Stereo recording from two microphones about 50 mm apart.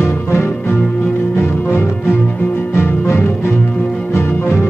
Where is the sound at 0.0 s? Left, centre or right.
Left.